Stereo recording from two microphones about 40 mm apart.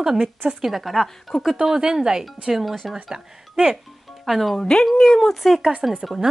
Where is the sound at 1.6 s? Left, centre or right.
Centre.